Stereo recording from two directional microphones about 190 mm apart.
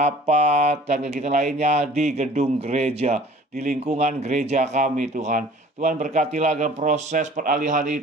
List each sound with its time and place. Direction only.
0.0 s speech: 35° right (ahead or behind)